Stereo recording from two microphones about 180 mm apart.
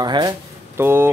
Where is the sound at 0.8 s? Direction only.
15° right (ahead or behind).